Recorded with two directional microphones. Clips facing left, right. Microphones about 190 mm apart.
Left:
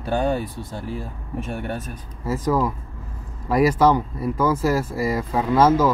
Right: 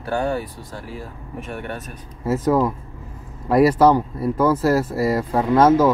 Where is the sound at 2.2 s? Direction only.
5° right (ahead or behind).